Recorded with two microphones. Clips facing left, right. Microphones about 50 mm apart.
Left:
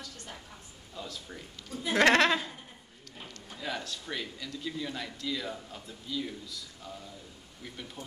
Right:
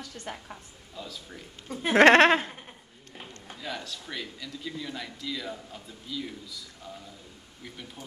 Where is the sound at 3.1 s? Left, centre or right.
Right.